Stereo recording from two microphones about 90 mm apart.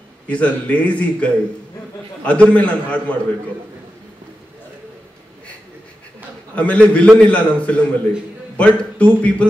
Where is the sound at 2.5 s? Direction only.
15° left (ahead or behind).